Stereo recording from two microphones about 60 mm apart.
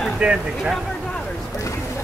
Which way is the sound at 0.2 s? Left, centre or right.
Centre.